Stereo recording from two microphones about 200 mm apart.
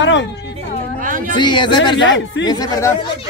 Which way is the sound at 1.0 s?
45° right (ahead or behind).